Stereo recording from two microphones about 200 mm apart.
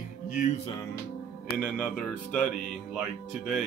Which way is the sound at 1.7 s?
5° left (ahead or behind).